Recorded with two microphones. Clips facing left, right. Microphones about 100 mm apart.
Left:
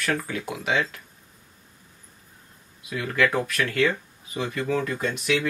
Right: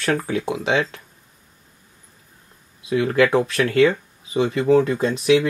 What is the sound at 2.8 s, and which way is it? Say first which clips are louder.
Speech: right 7 dB; 25° right (ahead or behind).